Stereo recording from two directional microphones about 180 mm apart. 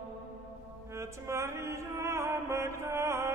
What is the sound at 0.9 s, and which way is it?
Music, 15° right (ahead or behind).